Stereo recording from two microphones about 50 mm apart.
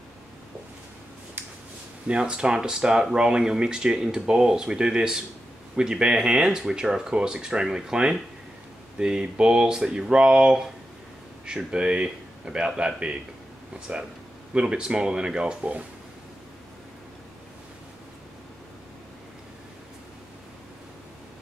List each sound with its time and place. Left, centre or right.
2.0 s a man's voice: right